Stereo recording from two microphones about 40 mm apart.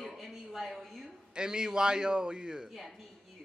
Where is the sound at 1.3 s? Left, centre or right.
Centre.